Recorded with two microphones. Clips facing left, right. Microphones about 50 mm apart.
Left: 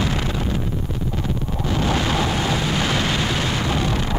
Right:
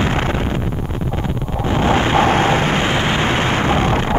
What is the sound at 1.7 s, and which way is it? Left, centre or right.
Eruption, right.